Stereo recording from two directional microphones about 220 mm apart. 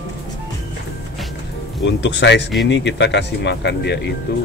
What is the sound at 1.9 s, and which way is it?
Speech, 55° left (ahead or behind).